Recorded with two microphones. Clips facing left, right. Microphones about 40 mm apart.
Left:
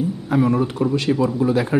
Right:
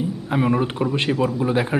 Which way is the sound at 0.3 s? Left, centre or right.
Right.